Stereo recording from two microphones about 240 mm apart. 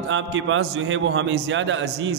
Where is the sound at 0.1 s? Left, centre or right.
Right.